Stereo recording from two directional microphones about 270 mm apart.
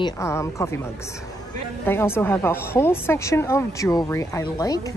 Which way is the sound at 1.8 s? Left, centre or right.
Centre.